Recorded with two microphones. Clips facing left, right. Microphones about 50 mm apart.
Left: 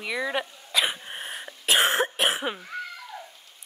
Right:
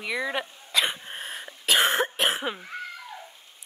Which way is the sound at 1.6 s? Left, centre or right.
Left.